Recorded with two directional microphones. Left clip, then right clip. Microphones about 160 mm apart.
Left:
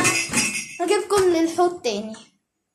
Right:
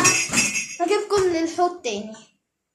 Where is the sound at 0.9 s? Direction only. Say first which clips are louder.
Left 2 dB; 25° left (ahead or behind).